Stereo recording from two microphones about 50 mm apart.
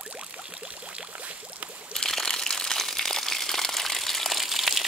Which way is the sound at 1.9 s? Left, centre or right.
Centre.